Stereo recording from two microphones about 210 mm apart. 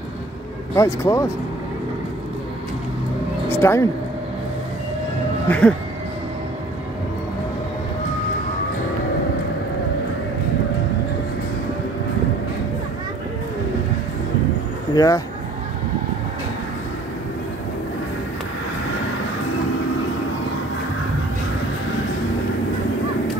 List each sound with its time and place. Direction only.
0.7 s speech: 15° left (ahead or behind)
3.4 s speech: 10° left (ahead or behind)
5.5 s speech: 5° left (ahead or behind)
15.0 s speech: 15° left (ahead or behind)